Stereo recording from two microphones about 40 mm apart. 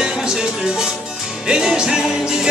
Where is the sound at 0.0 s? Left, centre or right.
Centre.